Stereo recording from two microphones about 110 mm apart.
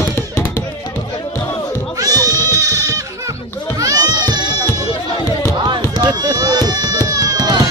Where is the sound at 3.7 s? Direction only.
30° right (ahead or behind).